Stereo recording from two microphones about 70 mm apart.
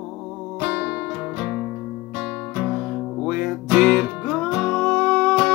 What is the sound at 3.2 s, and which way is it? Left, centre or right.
Music, centre.